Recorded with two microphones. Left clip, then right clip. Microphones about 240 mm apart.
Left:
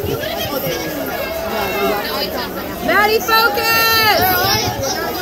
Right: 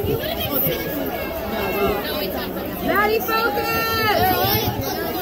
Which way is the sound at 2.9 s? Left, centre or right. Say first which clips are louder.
Left 6 dB; left.